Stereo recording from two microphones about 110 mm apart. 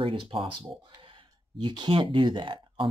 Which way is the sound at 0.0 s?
50° right (ahead or behind).